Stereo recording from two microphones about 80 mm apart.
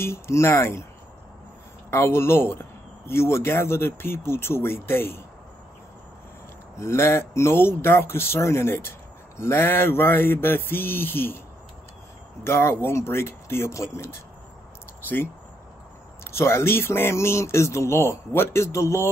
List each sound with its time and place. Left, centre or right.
0.0 s speech: left
1.9 s speech: left
6.8 s speech: left
9.4 s mantra: left
12.4 s speech: left
16.3 s speech: left